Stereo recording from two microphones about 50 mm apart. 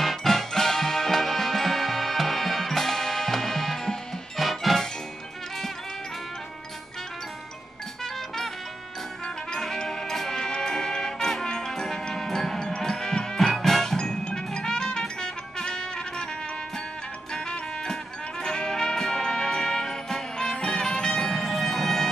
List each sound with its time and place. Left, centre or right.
0.0 s music: centre
9.5 s music: centre
17.3 s music: centre